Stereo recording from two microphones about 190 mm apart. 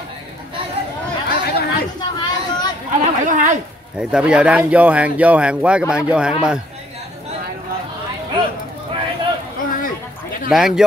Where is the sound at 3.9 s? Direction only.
5° right (ahead or behind).